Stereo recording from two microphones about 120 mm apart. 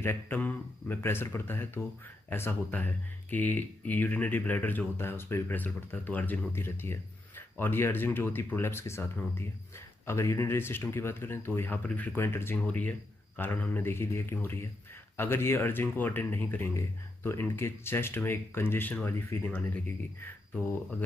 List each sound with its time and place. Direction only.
0.0 s speech: 20° left (ahead or behind)